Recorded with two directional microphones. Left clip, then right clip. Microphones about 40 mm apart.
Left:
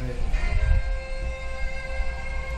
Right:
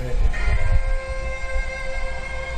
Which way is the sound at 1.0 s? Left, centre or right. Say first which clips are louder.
Right 6 dB; right.